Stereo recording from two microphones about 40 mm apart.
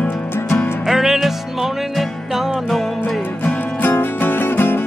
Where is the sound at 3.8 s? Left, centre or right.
Left.